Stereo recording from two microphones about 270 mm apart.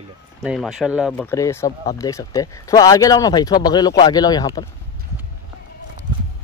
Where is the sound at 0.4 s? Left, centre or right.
Centre.